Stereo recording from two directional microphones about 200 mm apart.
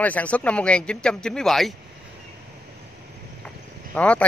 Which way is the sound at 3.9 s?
5° left (ahead or behind).